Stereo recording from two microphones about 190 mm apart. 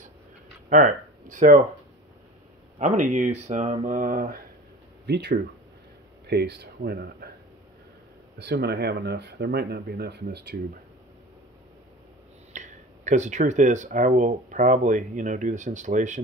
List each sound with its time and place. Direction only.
0.7 s speech: 45° right (ahead or behind)
2.8 s speech: 40° right (ahead or behind)
5.0 s speech: 60° right (ahead or behind)
8.4 s speech: 60° right (ahead or behind)
12.5 s speech: 40° right (ahead or behind)